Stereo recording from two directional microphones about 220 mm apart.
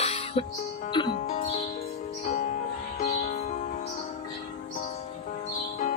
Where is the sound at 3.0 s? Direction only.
30° left (ahead or behind).